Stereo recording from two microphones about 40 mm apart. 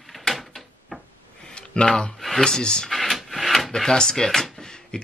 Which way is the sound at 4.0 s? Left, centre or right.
Centre.